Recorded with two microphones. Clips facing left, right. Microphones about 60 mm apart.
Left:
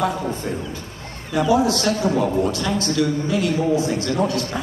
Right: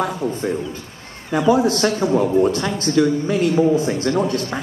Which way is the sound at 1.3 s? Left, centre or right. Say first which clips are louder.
Right 2 dB; right.